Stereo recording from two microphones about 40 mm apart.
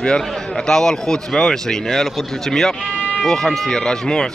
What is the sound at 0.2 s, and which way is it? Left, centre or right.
A man's voice, centre.